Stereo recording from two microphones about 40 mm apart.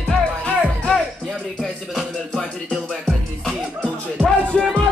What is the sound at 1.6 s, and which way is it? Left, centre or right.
Music, centre.